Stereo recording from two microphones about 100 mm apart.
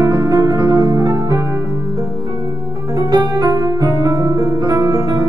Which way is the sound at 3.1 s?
45° right (ahead or behind).